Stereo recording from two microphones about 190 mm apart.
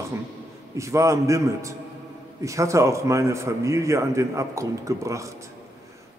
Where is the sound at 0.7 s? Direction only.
15° right (ahead or behind).